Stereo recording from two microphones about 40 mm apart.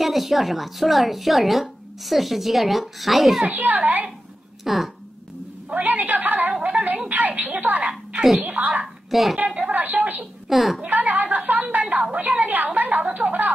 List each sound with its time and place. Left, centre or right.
0.0 s speech: centre
3.4 s a woman's voice: right
4.6 s speech: centre
5.7 s a woman's voice: right
6.6 s music: right
8.4 s a woman's voice: right
8.8 s a woman's voice: centre
9.6 s a woman's voice: right
10.5 s speech: centre
10.8 s speech: right
11.7 s a sound: right
12.1 s a woman's voice: right